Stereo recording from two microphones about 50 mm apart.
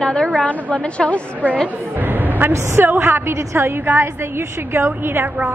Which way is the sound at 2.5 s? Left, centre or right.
Right.